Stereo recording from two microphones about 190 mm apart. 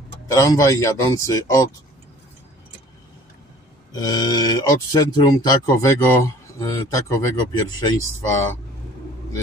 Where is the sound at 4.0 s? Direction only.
20° left (ahead or behind).